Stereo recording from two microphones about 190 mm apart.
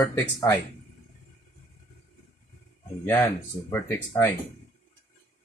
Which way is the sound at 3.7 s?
10° left (ahead or behind).